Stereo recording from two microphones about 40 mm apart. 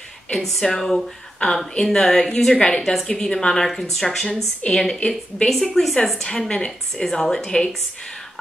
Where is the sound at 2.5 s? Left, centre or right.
Left; by 4.4 s centre.